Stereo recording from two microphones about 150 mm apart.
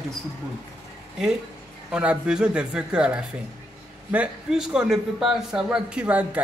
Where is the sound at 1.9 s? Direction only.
5° right (ahead or behind).